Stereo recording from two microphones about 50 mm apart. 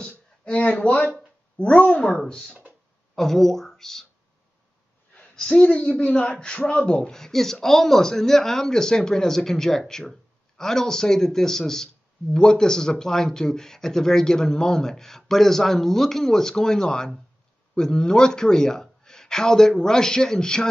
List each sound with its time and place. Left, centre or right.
0.1 s a sound: left
1.6 s speech: left
3.2 s a man's voice: centre
5.3 s a woman's voice: centre
5.7 s a man's voice: left